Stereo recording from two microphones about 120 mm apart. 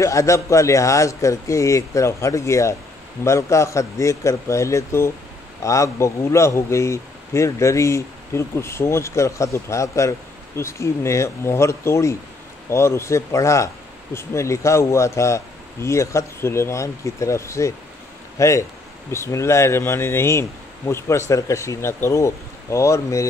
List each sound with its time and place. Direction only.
0.0 s speech: 25° left (ahead or behind)